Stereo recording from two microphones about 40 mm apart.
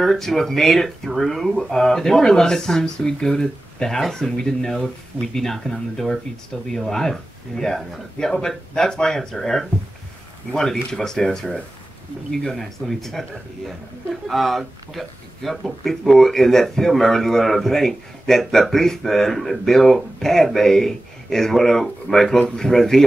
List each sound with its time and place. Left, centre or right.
0.0 s speech: centre
14.3 s speech: centre